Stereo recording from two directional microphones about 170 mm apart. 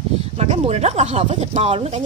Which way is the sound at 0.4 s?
40° right (ahead or behind).